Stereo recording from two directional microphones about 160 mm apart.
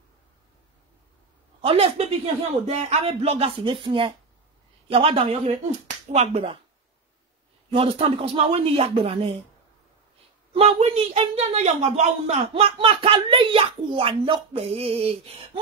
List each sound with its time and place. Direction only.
1.6 s a woman's voice: 35° right (ahead or behind)
7.7 s a woman's voice: 35° right (ahead or behind)
10.5 s a woman's voice: 40° right (ahead or behind)